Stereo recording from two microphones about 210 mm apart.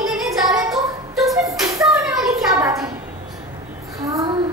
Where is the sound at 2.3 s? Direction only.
15° right (ahead or behind).